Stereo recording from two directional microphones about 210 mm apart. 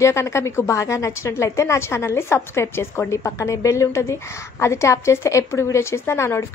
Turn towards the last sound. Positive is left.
turn(degrees=10)  # may be behind; listen again after turning